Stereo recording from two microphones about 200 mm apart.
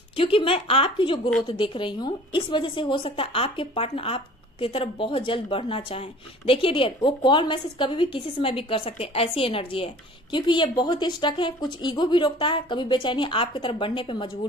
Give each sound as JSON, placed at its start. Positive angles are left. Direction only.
{"t": 0.2, "sound": "a woman's voice", "side_deg": 25}